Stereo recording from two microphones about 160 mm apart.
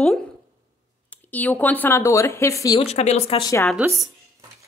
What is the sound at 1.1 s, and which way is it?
Speech, 10° left (ahead or behind).